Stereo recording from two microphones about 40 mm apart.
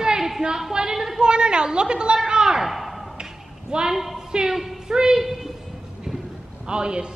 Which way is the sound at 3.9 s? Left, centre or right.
Centre.